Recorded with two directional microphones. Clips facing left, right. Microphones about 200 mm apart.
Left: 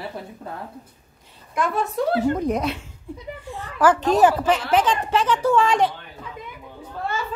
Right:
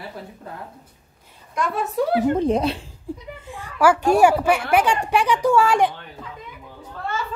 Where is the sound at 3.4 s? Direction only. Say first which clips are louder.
Right 1 dB; 15° right (ahead or behind).